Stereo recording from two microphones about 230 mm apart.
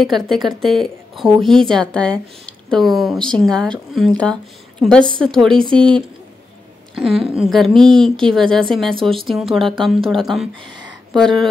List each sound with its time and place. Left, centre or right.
0.0 s a woman's voice: centre
5.8 s speech: right
7.2 s a woman's voice: centre
10.5 s speech: right
11.1 s a woman's voice: centre